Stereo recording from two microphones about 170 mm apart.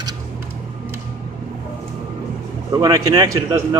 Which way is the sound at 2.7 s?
20° right (ahead or behind).